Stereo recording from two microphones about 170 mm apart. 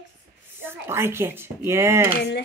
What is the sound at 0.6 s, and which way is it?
Speech, 15° right (ahead or behind).